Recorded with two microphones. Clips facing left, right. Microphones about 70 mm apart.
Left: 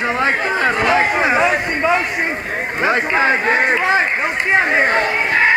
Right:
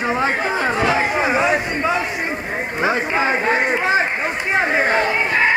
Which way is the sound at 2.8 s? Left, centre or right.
Left.